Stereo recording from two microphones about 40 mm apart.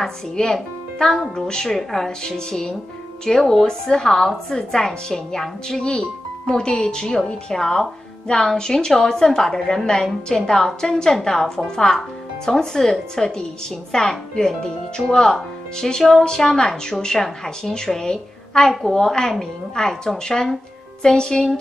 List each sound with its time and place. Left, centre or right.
0.0 s a woman's voice: centre
16.0 s speech: centre
16.3 s a woman's voice: centre